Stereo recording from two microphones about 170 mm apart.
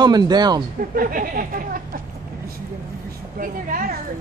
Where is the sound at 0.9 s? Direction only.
55° right (ahead or behind).